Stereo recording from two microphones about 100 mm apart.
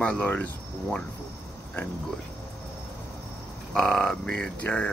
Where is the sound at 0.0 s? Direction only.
15° left (ahead or behind).